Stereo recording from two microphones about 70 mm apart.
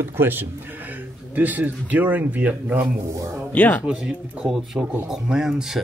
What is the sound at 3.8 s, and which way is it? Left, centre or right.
Speech, centre.